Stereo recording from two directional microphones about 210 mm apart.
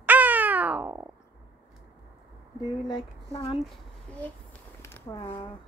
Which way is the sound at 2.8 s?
20° left (ahead or behind).